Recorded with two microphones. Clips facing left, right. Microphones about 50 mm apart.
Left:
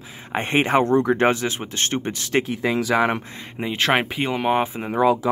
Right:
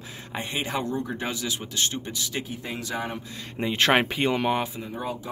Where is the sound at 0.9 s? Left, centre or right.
Left.